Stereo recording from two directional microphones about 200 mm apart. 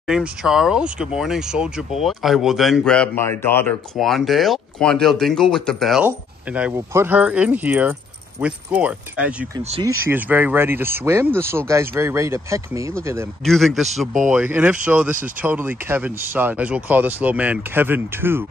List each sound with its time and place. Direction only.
0.0 s speech: centre (ahead or behind)
9.6 s speech: 30° right (ahead or behind)
9.8 s speech: 10° right (ahead or behind)
13.5 s speech: centre (ahead or behind)